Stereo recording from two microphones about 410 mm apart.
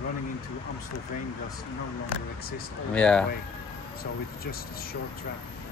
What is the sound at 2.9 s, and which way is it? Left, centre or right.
Speech, centre.